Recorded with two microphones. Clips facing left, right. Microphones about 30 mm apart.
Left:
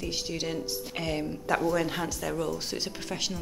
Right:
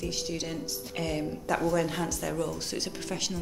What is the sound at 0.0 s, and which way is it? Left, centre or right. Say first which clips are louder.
Speech: left 1 dB; centre.